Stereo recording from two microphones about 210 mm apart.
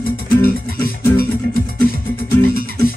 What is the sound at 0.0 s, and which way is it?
Music, 45° left (ahead or behind).